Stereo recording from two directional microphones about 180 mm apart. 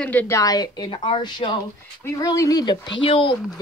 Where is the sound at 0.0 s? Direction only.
10° left (ahead or behind).